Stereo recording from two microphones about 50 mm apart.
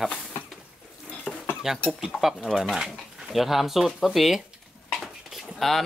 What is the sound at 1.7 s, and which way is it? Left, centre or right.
Speech, centre.